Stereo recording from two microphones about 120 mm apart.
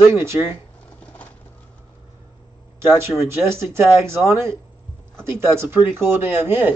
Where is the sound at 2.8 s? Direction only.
25° right (ahead or behind).